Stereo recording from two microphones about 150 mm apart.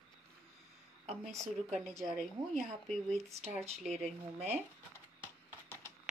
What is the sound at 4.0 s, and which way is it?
Speech, 45° right (ahead or behind).